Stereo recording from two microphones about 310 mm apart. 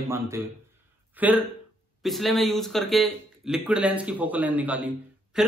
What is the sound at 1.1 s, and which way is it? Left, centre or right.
A man's voice, centre.